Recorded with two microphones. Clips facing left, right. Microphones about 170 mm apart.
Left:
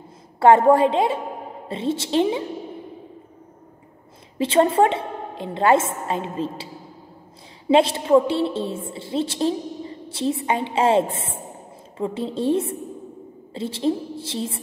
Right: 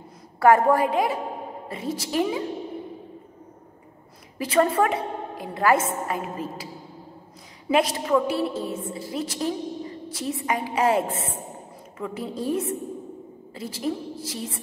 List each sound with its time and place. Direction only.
0.4 s a woman's voice: 25° left (ahead or behind)
4.4 s a woman's voice: 25° left (ahead or behind)